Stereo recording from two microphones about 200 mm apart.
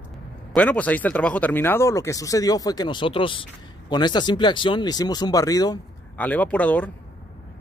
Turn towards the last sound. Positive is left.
turn(degrees=5)  # may be behind; listen again after turning